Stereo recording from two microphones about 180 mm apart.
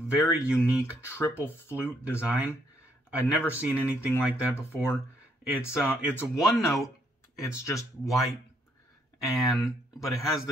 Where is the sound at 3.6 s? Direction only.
5° right (ahead or behind).